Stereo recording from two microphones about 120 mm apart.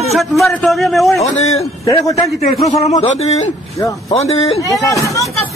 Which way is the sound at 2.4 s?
60° left (ahead or behind).